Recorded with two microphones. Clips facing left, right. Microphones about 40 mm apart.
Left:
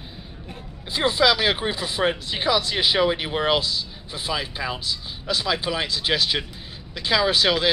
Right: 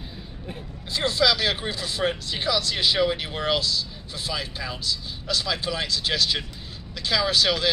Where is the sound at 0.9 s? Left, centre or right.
Left.